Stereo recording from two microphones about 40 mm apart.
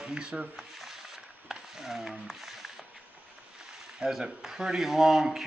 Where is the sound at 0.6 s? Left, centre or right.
Centre.